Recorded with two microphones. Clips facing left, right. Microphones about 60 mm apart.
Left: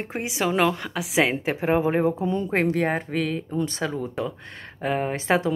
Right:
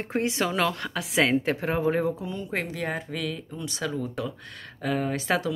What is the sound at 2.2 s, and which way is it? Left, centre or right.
Speech, left.